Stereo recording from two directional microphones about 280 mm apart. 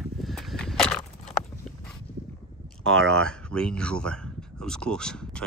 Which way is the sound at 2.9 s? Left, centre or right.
Centre.